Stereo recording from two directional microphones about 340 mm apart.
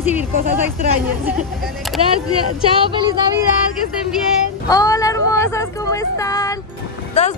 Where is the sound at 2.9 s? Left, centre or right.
Centre.